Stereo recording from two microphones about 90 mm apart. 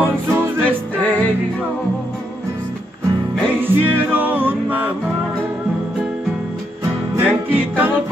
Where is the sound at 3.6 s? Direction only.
20° right (ahead or behind).